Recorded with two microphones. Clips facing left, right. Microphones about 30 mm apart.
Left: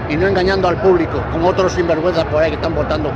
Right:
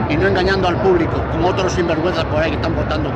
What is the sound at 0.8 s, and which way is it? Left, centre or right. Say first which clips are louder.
Speech: left 2 dB; left.